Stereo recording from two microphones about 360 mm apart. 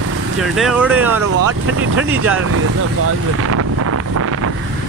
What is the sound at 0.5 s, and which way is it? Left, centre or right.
Speech, centre.